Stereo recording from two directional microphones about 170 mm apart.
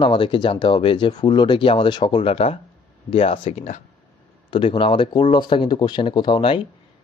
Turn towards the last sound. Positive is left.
turn(degrees=30)  # may be behind; listen again after turning